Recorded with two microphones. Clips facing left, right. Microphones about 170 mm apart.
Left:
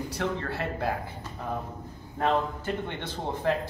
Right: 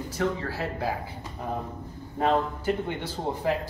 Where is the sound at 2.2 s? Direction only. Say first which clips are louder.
Right 2 dB; 10° right (ahead or behind).